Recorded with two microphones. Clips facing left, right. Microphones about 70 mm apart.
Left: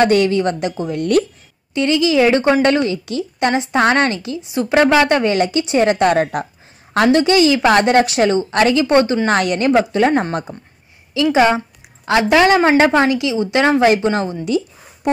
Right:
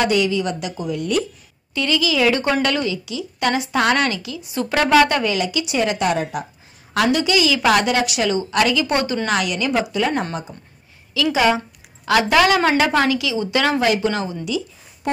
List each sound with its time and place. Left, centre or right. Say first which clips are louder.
0.0 s a woman's voice: left 5 dB; left
0.9 s speech: left 6 dB; left
1.7 s a woman's voice: left 5 dB; left
5.3 s a woman's voice: left 6 dB; left
6.9 s a woman's voice: left 5 dB; left